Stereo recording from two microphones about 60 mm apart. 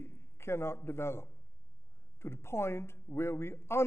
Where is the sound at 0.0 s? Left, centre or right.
Left.